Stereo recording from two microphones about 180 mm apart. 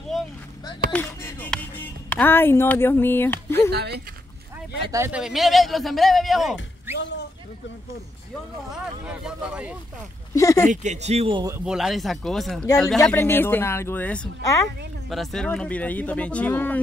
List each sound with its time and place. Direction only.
0.9 s music: 10° left (ahead or behind)
3.7 s speech: 65° right (ahead or behind)
4.9 s speech: 15° right (ahead or behind)
5.2 s a man's voice: centre (ahead or behind)
6.9 s a sound: 10° right (ahead or behind)
8.7 s speech: 5° right (ahead or behind)
10.3 s speech: 15° left (ahead or behind)
10.7 s speech: 40° right (ahead or behind)
11.6 s a man's voice: 5° right (ahead or behind)
13.1 s speech: 10° left (ahead or behind)